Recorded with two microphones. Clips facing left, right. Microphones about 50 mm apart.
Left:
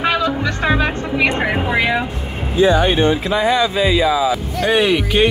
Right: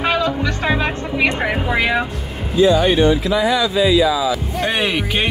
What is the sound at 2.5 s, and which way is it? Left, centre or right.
Speech, left.